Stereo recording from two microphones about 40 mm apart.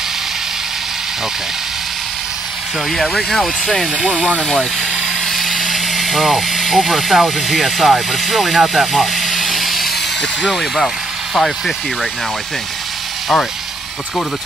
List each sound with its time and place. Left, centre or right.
2.9 s speech: centre
3.9 s speech: right
5.2 s a sound: centre
10.4 s speech: centre